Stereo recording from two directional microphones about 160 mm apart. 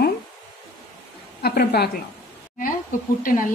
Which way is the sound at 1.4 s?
80° left.